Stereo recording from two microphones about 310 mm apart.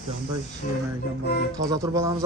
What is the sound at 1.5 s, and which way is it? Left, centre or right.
Speech, centre.